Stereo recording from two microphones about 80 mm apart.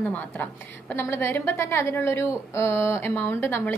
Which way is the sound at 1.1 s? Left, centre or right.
Left.